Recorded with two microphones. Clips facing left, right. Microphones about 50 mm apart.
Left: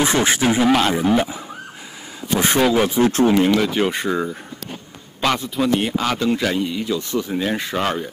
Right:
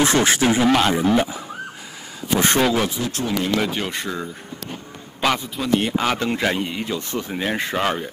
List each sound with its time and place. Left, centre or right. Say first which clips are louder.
0.0 s speech: even; centre
3.0 s speech: left 9 dB; left
3.5 s speech: left 3 dB; centre
3.8 s speech: left 6 dB; centre
5.2 s speech: left 2 dB; centre
6.1 s a man's voice: left 2 dB; right
7.7 s speech: even; centre